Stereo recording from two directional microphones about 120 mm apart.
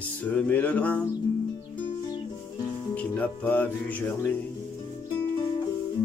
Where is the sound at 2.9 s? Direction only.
10° left (ahead or behind).